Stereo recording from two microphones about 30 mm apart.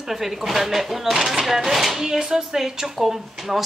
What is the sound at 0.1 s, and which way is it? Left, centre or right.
Speech, centre.